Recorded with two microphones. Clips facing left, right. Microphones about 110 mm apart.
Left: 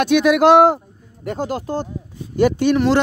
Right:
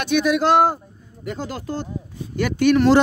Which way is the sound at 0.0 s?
80° left.